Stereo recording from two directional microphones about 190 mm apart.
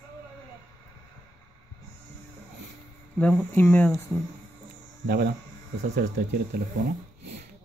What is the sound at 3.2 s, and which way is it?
Speech, 10° left (ahead or behind).